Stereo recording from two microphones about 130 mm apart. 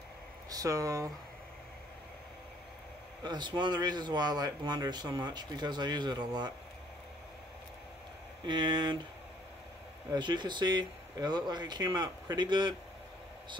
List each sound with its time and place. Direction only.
0.5 s speech: 25° right (ahead or behind)
3.3 s speech: 35° right (ahead or behind)
8.5 s speech: 35° right (ahead or behind)
10.1 s speech: 35° right (ahead or behind)